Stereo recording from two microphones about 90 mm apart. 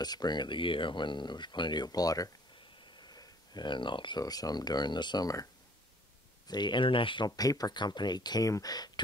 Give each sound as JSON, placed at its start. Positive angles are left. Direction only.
{"t": 0.0, "sound": "speech", "side_deg": 50}
{"t": 3.0, "sound": "a sound", "side_deg": 50}
{"t": 4.2, "sound": "speech", "side_deg": 45}
{"t": 7.2, "sound": "speech", "side_deg": 45}